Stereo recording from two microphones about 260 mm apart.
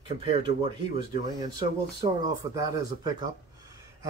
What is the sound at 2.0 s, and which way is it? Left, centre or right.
Speech, centre.